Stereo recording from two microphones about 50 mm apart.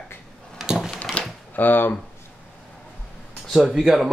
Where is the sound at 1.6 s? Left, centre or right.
Left.